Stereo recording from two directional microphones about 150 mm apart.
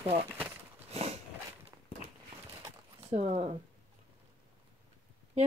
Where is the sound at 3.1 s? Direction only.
40° right (ahead or behind).